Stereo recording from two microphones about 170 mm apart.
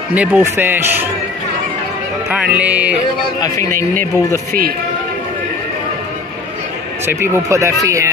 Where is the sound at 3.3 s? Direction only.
20° left (ahead or behind).